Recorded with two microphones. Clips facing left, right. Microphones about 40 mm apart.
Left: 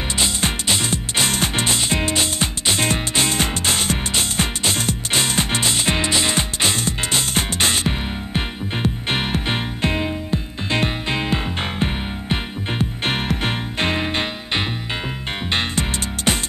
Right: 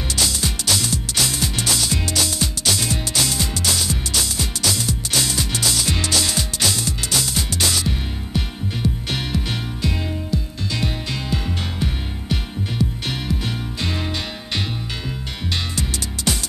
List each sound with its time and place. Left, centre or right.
0.1 s music: left